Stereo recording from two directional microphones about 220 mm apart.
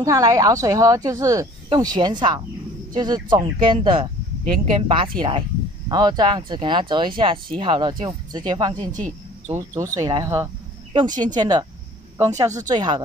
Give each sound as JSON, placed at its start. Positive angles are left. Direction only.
{"t": 0.0, "sound": "speech", "side_deg": -15}
{"t": 8.7, "sound": "speech", "side_deg": -35}
{"t": 9.5, "sound": "speech", "side_deg": -15}